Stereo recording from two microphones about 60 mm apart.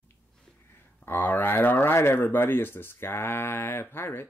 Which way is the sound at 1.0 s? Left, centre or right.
Left.